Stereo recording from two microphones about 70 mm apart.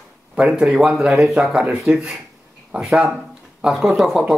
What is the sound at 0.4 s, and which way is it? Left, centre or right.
Speech, centre.